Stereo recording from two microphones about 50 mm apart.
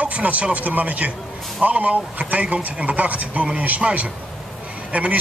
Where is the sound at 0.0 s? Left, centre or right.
Right.